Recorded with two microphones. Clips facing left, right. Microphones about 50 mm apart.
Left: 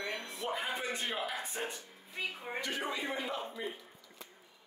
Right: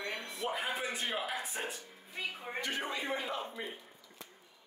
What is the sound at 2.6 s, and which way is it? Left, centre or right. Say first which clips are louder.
Speech: even; right.